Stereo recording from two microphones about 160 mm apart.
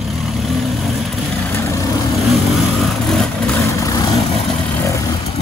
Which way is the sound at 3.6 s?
20° left (ahead or behind).